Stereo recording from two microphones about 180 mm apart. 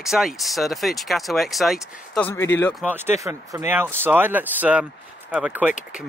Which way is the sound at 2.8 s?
10° right (ahead or behind).